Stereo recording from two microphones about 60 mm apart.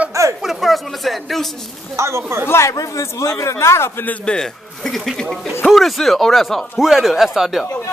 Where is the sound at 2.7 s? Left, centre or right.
Left.